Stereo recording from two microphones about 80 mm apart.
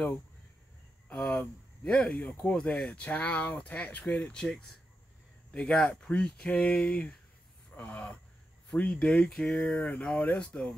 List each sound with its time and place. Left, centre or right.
1.1 s speech: centre
9.8 s speech: centre